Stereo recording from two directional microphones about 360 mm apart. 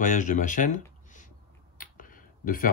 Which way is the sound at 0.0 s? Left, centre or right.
Left.